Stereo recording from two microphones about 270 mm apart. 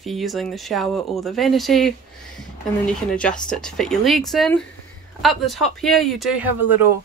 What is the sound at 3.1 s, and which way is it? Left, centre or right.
Speech, centre.